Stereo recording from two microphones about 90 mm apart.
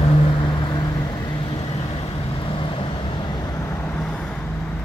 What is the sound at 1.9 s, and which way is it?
Vehicle, 75° left (ahead or behind).